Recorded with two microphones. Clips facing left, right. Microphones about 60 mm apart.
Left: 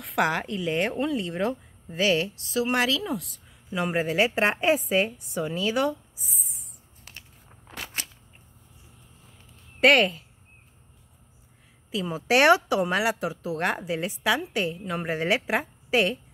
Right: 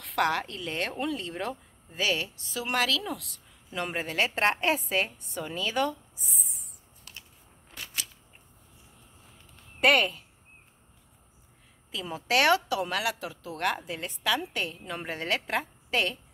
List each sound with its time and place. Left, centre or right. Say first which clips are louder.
0.0 s speech: left 2 dB; centre
1.9 s a woman's voice: left 6 dB; left; by 6.7 s centre
8.0 s scissors: left 1 dB; left
9.8 s speech: left 4 dB; centre
11.9 s speech: left 6 dB; centre
12.3 s a woman's voice: left 5 dB; centre